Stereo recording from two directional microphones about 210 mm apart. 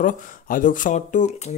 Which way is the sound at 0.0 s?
40° left (ahead or behind).